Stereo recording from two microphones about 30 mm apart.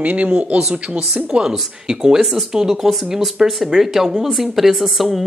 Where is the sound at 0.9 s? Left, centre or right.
Right.